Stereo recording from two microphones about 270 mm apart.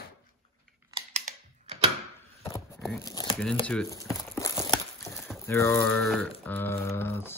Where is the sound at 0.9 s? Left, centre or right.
Right.